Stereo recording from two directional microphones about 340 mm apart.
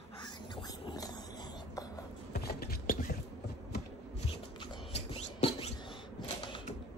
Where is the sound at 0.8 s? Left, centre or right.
Centre.